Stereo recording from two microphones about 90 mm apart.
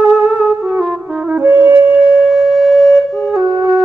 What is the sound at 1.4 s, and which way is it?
Wind instrument, 25° right (ahead or behind).